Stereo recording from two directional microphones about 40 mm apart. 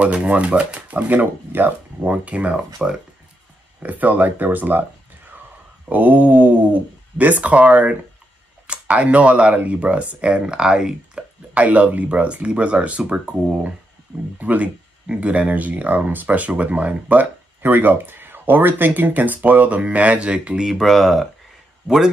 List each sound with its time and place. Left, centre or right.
0.0 s speech: right
1.5 s speech: right
2.2 s speech: right
2.5 s speech: right
3.8 s speech: right
5.9 s speech: right
10.4 s speech: centre
11.5 s speech: right
14.4 s speech: right
17.6 s speech: right
20.6 s speech: centre
21.8 s a man's voice: centre